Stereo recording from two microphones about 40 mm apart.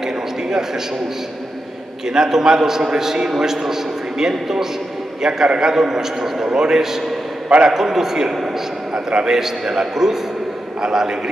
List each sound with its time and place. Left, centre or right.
0.0 s a sound: centre
2.0 s a man's voice: centre
7.4 s a man's voice: right
7.7 s a man's voice: centre